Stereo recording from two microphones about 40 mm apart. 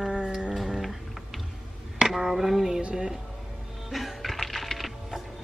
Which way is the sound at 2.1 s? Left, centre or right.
Centre.